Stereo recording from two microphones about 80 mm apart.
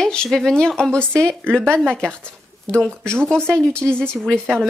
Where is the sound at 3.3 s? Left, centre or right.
Centre.